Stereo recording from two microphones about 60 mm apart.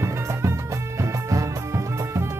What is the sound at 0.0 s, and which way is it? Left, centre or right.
Music, right.